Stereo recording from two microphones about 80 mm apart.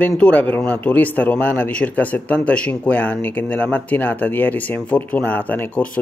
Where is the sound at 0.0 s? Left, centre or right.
Centre.